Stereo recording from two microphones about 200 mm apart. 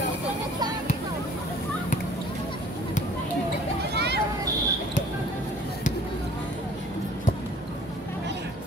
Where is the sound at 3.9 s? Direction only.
55° right (ahead or behind).